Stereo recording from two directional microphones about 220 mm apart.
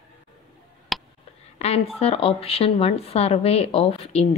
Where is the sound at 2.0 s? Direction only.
25° left (ahead or behind).